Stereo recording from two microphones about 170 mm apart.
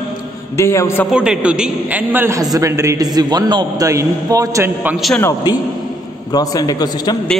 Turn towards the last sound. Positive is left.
turn(degrees=25)  # may be behind; listen again after turning